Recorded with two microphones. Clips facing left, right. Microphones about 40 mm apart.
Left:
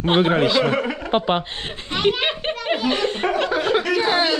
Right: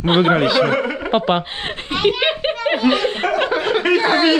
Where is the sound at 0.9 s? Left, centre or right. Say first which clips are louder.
Right 3 dB; right.